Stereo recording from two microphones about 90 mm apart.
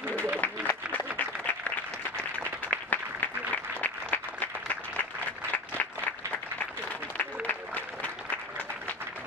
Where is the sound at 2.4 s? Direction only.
15° left (ahead or behind).